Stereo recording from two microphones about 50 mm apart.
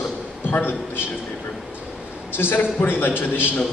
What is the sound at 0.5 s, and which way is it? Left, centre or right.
Speech, left.